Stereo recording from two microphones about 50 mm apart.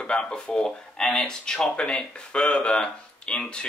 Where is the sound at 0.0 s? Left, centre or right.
Centre.